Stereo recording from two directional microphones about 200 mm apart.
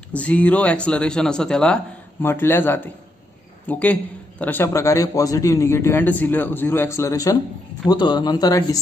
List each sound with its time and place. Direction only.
0.1 s a man's voice: 5° left (ahead or behind)